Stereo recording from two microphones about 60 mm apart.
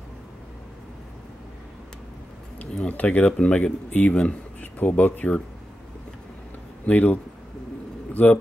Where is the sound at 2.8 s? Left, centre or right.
Left.